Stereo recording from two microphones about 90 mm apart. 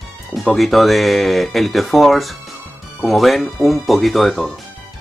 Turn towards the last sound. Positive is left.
turn(degrees=5)  # may be behind; listen again after turning